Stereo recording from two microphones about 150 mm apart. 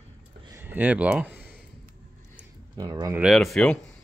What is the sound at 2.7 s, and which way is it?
Speech, 25° right (ahead or behind).